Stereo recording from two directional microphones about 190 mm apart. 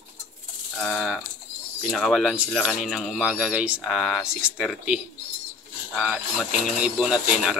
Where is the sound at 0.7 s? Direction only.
Centre (ahead or behind).